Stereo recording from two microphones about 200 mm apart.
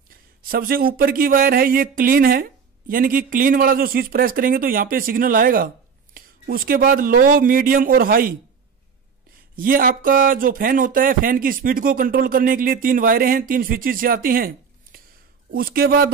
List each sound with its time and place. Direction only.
0.1 s speech: 45° right (ahead or behind)
9.6 s speech: 45° right (ahead or behind)